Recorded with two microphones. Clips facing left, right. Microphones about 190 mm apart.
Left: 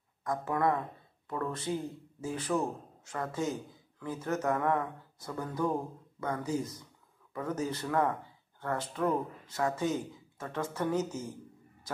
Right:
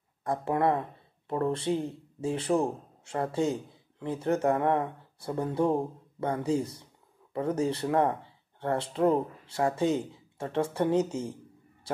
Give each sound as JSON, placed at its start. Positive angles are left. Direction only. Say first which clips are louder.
{"t": 0.2, "sound": "speech", "louder": "right 3 dB", "side_deg": -30}